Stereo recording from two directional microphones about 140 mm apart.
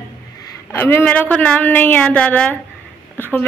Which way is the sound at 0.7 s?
15° left (ahead or behind).